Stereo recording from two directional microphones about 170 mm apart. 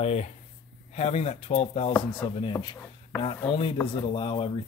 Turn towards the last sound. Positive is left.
turn(degrees=30)  # may be behind; listen again after turning